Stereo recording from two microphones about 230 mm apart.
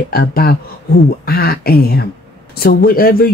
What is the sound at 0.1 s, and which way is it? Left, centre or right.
Speech, left.